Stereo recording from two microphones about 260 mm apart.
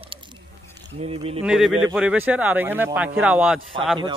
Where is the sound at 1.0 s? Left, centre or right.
Right.